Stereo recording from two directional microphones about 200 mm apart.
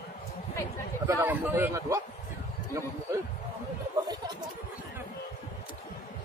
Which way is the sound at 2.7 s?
15° right (ahead or behind).